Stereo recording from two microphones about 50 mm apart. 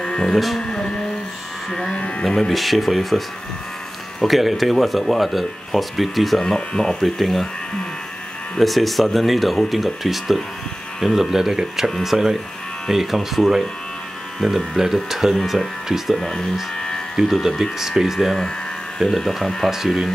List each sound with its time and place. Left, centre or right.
0.0 s a sound: centre
0.3 s speech: centre
0.6 s speech: centre
1.7 s sheep: centre
2.2 s speech: centre
6.4 s speech: centre
8.5 s speech: centre
14.7 s speech: centre
16.7 s music: centre
17.1 s speech: centre